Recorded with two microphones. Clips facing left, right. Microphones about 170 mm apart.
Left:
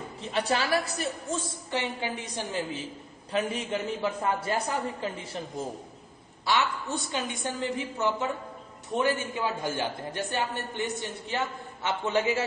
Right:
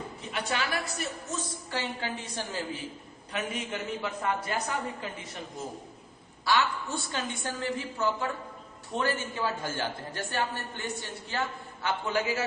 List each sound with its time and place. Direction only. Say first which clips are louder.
0.2 s a woman's voice: left 5 dB; 35° left (ahead or behind); by 2.8 s 20° left (ahead or behind)
3.3 s a man's voice: left 5 dB; 30° left (ahead or behind)
6.4 s a woman's voice: even; 20° left (ahead or behind)